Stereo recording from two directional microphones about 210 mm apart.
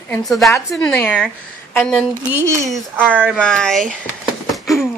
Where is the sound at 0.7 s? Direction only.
5° left (ahead or behind).